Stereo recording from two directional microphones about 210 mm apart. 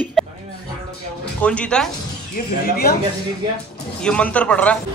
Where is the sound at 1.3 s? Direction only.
5° left (ahead or behind).